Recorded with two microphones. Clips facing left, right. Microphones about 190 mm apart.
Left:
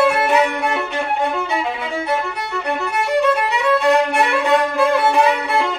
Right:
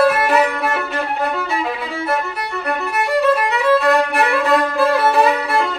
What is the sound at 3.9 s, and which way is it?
Violin, centre (ahead or behind).